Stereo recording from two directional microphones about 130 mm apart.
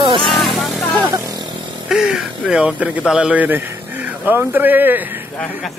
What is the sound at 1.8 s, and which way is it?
Speech, 5° right (ahead or behind).